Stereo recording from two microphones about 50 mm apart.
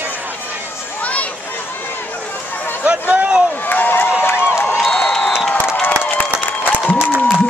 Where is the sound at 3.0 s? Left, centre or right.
Right.